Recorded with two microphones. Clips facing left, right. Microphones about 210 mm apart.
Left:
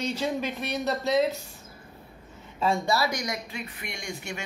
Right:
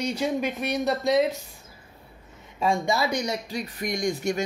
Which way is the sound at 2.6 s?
15° right (ahead or behind).